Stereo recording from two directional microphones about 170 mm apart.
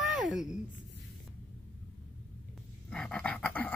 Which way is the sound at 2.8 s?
5° left (ahead or behind).